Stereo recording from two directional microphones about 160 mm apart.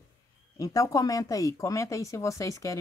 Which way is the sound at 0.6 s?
20° left (ahead or behind).